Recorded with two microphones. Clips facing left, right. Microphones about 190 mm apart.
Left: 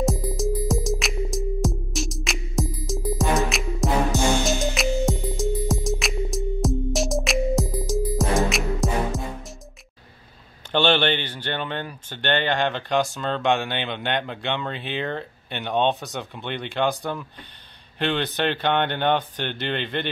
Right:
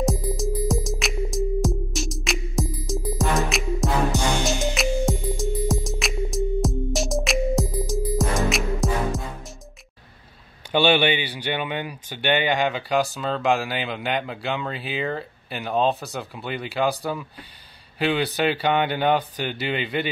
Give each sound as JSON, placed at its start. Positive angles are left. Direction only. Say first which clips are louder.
{"t": 0.0, "sound": "music", "louder": "even", "side_deg": 0}
{"t": 10.7, "sound": "speech", "louder": "right 1 dB", "side_deg": -10}